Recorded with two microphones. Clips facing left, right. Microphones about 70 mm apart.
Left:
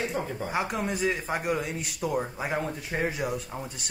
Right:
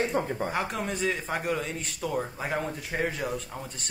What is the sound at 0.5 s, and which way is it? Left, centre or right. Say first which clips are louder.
A man's voice: left 1 dB; centre.